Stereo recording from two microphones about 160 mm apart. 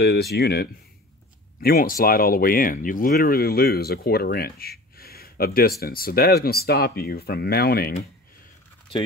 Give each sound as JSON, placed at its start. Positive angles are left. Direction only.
{"t": 0.0, "sound": "speech", "side_deg": 90}
{"t": 1.6, "sound": "speech", "side_deg": 65}